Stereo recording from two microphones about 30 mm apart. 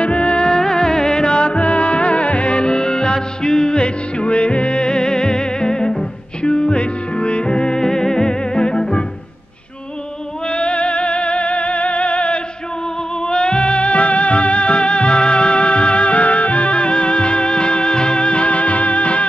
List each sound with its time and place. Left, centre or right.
0.0 s music: left
0.6 s music: left
3.8 s music: left
10.5 s music: left
13.3 s music: left